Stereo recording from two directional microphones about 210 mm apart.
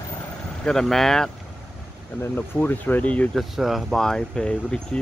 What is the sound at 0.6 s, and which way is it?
Speech, 5° left (ahead or behind).